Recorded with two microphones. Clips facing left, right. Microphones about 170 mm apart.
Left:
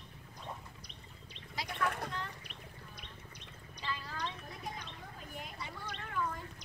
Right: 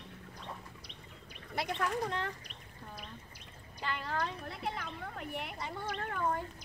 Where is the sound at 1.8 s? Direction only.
60° left (ahead or behind).